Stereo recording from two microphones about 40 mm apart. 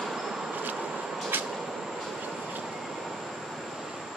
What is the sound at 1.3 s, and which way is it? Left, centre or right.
Vehicle, right.